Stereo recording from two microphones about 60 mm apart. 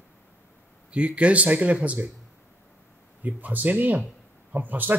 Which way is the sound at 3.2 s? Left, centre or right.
Right.